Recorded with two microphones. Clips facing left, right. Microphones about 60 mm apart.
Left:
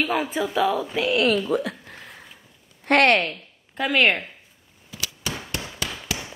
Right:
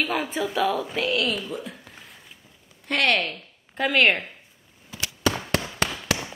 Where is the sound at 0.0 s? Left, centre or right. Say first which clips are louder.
Left 2 dB; centre.